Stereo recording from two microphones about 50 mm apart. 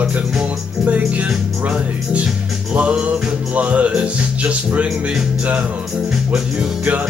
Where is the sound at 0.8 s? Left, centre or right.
Right.